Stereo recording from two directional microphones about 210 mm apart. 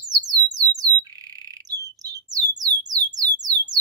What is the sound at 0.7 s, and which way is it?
Alarm, 15° right (ahead or behind).